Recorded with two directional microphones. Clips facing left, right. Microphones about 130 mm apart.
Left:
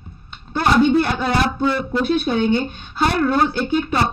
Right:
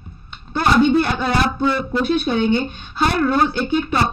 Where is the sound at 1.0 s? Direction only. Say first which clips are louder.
Even; 40° left (ahead or behind).